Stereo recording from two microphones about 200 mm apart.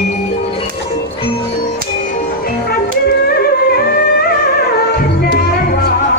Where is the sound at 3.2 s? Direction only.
50° left (ahead or behind).